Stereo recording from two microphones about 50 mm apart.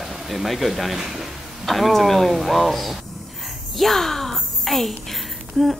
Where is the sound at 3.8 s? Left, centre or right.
Centre.